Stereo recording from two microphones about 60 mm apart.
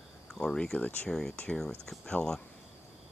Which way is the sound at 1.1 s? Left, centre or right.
Centre.